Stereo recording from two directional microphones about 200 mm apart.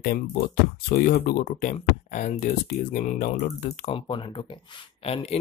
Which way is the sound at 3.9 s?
25° left (ahead or behind).